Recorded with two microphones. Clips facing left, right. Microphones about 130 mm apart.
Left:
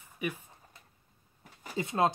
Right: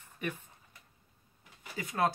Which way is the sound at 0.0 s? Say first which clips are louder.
Left 2 dB; 10° left (ahead or behind).